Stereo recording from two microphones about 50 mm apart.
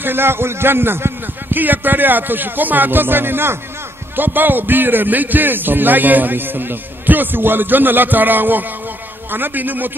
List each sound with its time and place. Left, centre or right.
0.0 s a man's voice: right
1.5 s a man's voice: right